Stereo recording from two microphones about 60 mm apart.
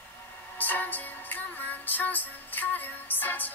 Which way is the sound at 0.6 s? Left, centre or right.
Left.